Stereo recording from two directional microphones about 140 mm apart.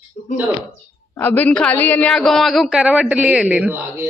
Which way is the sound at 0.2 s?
65° left (ahead or behind).